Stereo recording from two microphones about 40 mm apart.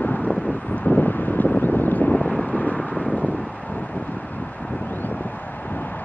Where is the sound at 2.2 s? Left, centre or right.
Left.